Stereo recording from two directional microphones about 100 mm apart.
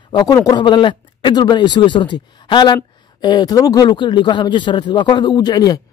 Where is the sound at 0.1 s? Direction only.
40° left (ahead or behind).